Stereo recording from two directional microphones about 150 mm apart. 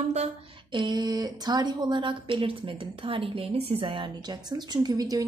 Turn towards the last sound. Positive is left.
turn(degrees=-25)  # may be behind; listen again after turning